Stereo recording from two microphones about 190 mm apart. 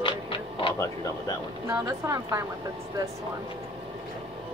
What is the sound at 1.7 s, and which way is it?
Speech, 15° right (ahead or behind).